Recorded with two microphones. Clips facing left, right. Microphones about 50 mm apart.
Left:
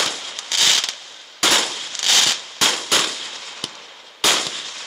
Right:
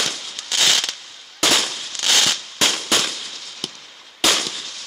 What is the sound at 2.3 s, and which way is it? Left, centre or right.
Firecracker, centre.